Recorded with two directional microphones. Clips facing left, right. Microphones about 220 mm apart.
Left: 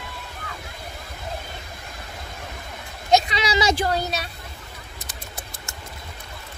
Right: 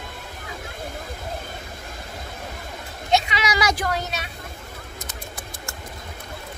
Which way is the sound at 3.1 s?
35° left (ahead or behind).